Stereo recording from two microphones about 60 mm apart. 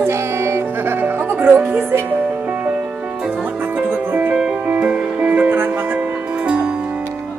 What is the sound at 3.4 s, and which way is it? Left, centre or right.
Music, right.